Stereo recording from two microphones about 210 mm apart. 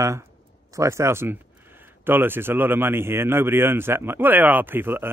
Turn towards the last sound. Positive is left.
turn(degrees=-10)  # may be behind; listen again after turning